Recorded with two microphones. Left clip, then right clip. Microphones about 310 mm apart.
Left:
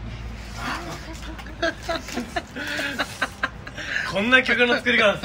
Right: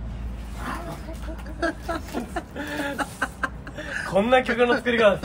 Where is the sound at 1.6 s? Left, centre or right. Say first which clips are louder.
Left 2 dB; centre.